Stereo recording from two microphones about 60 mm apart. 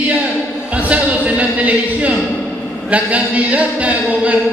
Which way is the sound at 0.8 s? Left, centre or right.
Right.